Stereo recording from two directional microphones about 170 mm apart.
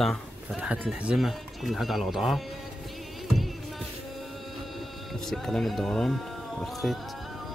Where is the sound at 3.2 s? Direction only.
Centre (ahead or behind).